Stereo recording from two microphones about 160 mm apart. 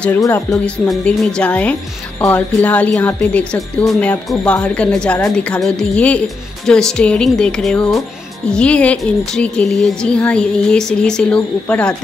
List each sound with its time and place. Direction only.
0.2 s speech: 20° left (ahead or behind)
0.8 s a woman's voice: 5° left (ahead or behind)